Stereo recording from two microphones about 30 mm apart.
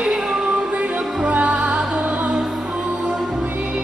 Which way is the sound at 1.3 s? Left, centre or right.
Right.